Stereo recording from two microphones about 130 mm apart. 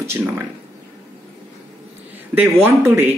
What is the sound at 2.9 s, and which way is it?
Speech, 15° right (ahead or behind).